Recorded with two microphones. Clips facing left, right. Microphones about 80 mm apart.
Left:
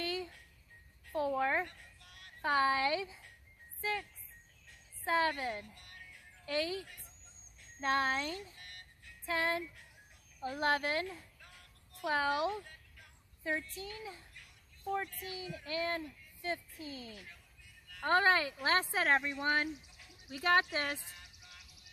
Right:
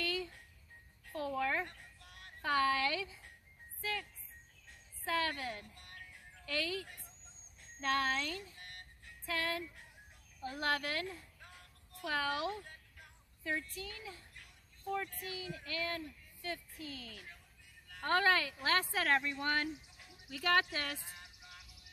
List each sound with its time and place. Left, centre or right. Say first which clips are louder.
0.0 s music: even; left
1.1 s a sound: left 4 dB; left
2.0 s a sound: right 2 dB; right
2.4 s speech: left 2 dB; left
8.5 s vehicle: right 1 dB; right
9.2 s speech: left 4 dB; left
15.0 s speech: even; right
15.3 s speech: left 4 dB; left